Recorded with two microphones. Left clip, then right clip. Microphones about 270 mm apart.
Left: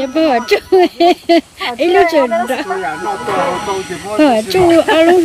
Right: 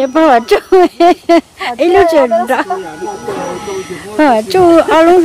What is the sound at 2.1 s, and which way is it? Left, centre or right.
Speech, right.